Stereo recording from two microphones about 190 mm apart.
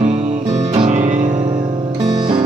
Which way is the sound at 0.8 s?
40° right (ahead or behind).